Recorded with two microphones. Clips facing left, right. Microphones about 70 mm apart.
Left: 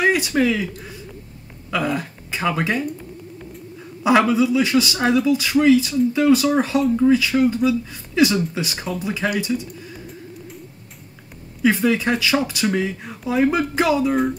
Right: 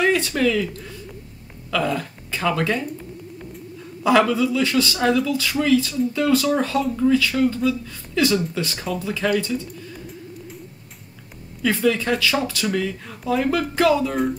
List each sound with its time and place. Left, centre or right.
0.0 s speech: centre
4.0 s speech: centre
11.6 s speech: centre